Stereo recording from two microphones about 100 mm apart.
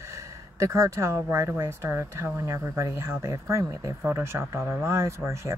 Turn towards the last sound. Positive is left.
turn(degrees=-30)  # may be behind; listen again after turning